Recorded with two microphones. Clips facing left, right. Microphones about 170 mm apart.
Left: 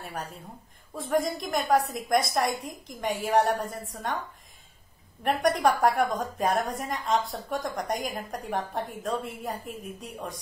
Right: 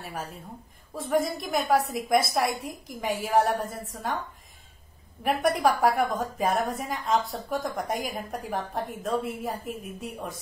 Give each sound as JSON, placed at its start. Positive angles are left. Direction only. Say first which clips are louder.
{"t": 0.0, "sound": "a woman's voice", "louder": "right 1 dB", "side_deg": 0}
{"t": 5.2, "sound": "a woman's voice", "louder": "even", "side_deg": -5}